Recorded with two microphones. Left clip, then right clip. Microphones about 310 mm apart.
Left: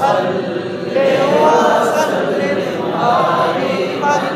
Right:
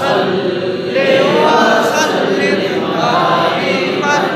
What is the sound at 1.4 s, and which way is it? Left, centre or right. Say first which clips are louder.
Choir: right 1 dB; left.